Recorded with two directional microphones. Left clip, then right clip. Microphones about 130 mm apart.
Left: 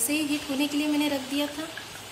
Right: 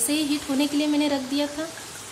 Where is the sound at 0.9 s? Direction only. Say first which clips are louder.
Right 3 dB; 50° right (ahead or behind).